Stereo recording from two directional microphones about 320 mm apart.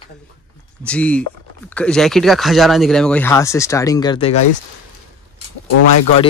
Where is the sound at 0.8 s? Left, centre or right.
Centre.